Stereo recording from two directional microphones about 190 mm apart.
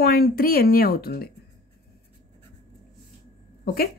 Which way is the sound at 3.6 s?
55° left (ahead or behind).